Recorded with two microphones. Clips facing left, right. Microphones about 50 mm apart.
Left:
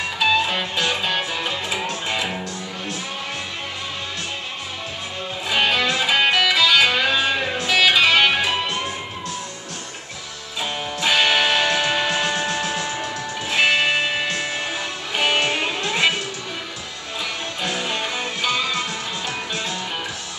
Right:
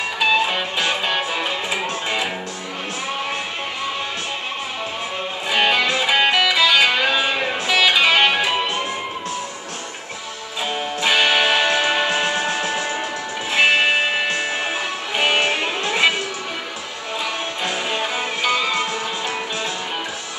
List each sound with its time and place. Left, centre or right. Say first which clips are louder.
0.2 s music: right 1 dB; centre
5.5 s music: right 2 dB; centre
10.6 s music: right 2 dB; centre
17.6 s music: right 1 dB; centre